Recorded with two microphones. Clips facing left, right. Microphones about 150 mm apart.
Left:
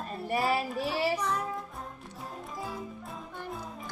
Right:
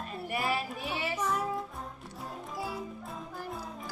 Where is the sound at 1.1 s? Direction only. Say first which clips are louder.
Even; 10° right (ahead or behind).